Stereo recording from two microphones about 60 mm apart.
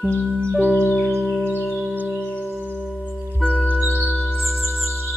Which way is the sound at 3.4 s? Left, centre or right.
Left.